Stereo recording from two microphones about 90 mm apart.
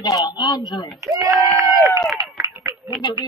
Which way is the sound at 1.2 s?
40° right (ahead or behind).